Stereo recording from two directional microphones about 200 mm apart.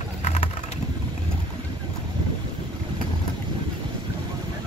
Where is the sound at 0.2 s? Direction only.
35° left (ahead or behind).